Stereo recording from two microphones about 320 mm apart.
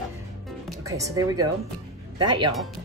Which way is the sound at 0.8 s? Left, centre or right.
Centre.